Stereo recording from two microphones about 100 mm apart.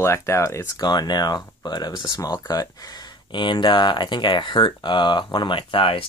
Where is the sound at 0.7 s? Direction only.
45° left (ahead or behind).